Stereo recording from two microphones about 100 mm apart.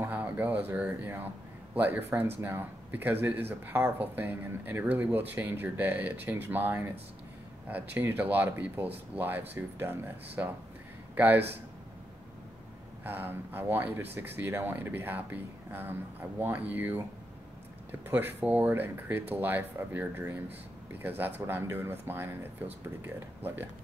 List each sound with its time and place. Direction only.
0.0 s a man's voice: 20° right (ahead or behind)
13.0 s speech: 20° right (ahead or behind)
18.0 s speech: 20° right (ahead or behind)